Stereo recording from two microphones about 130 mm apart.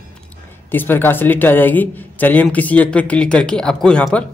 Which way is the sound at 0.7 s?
15° left (ahead or behind).